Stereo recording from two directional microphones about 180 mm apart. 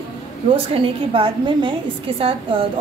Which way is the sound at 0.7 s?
30° right (ahead or behind).